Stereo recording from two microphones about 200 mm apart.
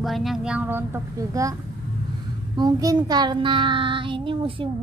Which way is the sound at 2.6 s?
20° right (ahead or behind).